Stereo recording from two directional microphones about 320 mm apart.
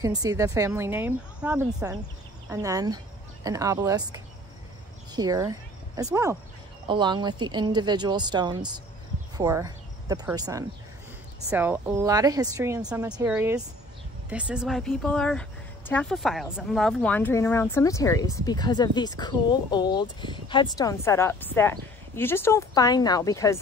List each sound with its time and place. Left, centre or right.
0.0 s speech: centre
5.1 s speech: centre